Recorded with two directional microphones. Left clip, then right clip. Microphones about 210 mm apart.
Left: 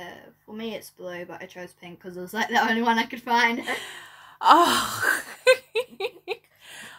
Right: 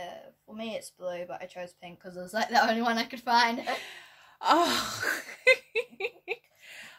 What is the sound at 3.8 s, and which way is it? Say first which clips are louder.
Sigh: left 6 dB; centre (ahead or behind).